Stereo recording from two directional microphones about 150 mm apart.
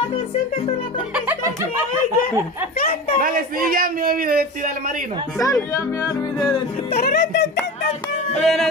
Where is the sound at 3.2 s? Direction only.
70° right (ahead or behind).